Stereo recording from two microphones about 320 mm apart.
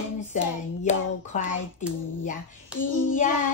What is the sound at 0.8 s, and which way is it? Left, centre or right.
A woman's voice, left.